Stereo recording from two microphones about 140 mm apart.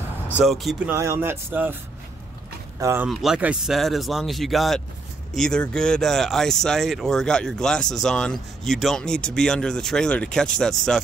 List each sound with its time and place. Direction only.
0.5 s speech: centre (ahead or behind)
0.8 s speech: 20° right (ahead or behind)
2.8 s speech: 15° right (ahead or behind)
3.1 s speech: 5° right (ahead or behind)